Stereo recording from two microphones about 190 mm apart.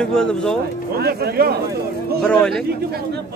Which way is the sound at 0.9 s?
55° right (ahead or behind).